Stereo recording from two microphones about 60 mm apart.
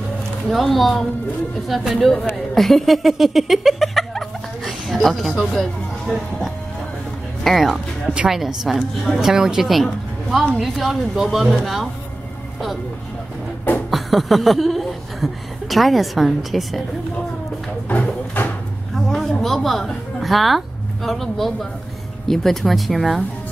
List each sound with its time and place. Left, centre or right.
0.5 s speech: centre
7.7 s speech: centre
8.3 s speech: centre
13.8 s chuckle: centre
17.8 s a sound: left
18.9 s a woman's voice: centre